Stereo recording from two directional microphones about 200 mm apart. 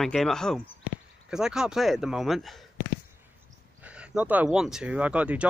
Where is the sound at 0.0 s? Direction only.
Centre (ahead or behind).